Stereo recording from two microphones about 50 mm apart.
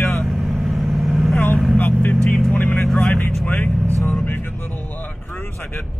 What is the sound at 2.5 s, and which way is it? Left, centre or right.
Speech, left.